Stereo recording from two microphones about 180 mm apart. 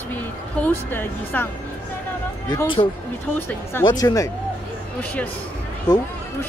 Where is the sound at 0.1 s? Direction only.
10° left (ahead or behind).